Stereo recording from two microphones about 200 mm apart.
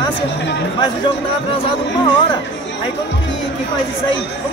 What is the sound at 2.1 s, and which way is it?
Speech, 25° left (ahead or behind).